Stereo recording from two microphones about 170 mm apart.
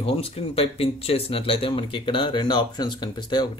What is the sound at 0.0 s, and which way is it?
Speech, 35° left (ahead or behind).